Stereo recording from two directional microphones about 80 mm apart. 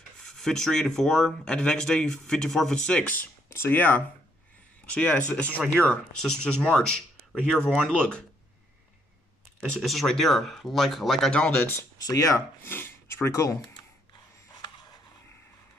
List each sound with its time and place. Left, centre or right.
0.4 s speech: centre
9.6 s speech: centre
11.5 s speech: left
12.1 s speech: left
12.6 s speech: left